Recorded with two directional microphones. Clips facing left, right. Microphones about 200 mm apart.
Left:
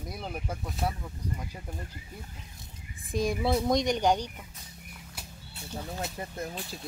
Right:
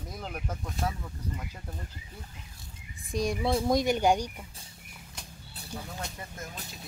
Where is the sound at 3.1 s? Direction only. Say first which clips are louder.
Left 1 dB; centre (ahead or behind).